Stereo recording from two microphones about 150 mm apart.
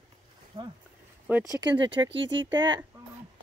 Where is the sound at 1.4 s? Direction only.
25° right (ahead or behind).